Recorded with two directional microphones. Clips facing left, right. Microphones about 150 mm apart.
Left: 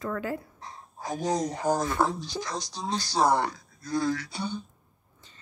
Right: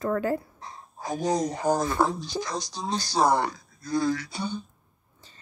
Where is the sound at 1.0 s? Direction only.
15° right (ahead or behind).